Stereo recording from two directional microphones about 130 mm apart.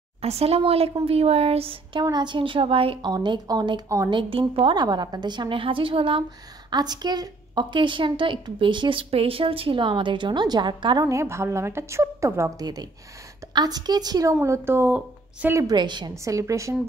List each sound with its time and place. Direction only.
0.2 s speech: 50° right (ahead or behind)
2.0 s a woman's voice: 35° right (ahead or behind)
3.1 s a woman's voice: 30° right (ahead or behind)
4.1 s a woman's voice: 40° right (ahead or behind)
11.1 s speech: 20° right (ahead or behind)
15.5 s speech: 30° right (ahead or behind)